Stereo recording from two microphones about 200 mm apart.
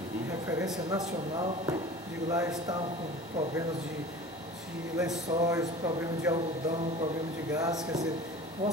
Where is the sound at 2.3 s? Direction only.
15° right (ahead or behind).